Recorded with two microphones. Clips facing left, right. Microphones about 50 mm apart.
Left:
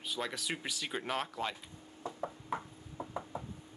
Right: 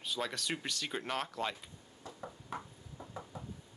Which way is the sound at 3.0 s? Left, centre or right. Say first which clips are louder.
Left 7 dB; left.